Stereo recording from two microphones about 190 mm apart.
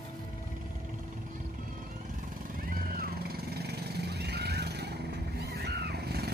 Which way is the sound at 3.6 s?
60° right (ahead or behind).